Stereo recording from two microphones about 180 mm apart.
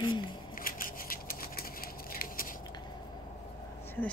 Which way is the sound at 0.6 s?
50° left (ahead or behind).